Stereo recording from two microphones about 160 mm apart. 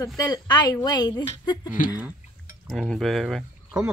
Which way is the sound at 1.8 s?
55° left (ahead or behind).